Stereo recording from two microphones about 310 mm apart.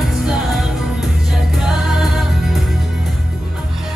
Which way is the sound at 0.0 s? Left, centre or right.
Centre.